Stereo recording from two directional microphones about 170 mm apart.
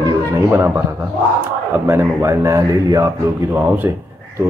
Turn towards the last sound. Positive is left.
turn(degrees=-10)  # may be behind; listen again after turning